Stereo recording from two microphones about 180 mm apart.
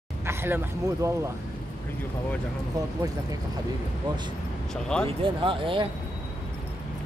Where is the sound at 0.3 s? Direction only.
15° right (ahead or behind).